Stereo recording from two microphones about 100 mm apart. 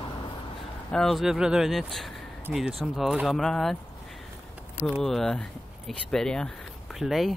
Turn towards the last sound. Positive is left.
turn(degrees=0)  # may be behind; listen again after turning